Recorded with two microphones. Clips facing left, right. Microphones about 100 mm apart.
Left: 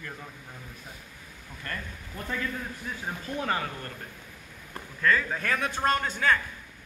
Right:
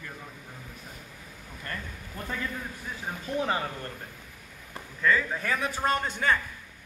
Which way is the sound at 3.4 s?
20° right (ahead or behind).